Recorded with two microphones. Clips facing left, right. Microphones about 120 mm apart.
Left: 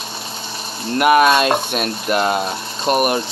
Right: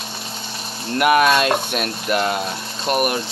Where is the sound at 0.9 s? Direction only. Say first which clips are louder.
Left 2 dB; 25° left (ahead or behind).